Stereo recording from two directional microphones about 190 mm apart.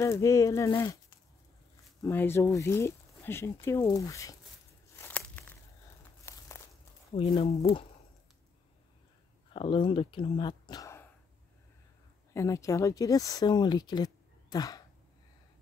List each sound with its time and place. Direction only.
0.0 s speech: 15° left (ahead or behind)
2.0 s speech: 10° left (ahead or behind)
4.9 s a sound: 10° left (ahead or behind)
6.3 s crumpling: 15° left (ahead or behind)
7.2 s speech: 35° left (ahead or behind)
9.5 s speech: 25° left (ahead or behind)
12.4 s speech: 15° left (ahead or behind)